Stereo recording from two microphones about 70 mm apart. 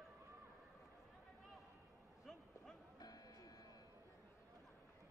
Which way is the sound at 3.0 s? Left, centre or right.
Left.